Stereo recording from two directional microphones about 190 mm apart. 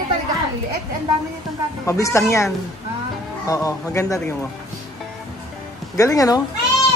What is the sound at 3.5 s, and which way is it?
Speech, 15° left (ahead or behind).